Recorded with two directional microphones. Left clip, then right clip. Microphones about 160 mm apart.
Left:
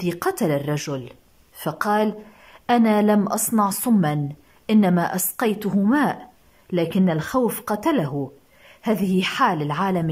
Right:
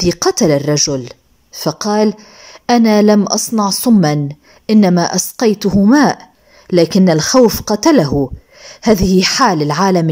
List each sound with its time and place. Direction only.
0.0 s a woman's voice: 25° right (ahead or behind)